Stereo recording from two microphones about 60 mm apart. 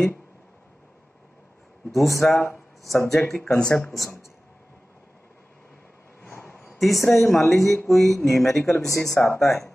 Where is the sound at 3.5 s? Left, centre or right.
Centre.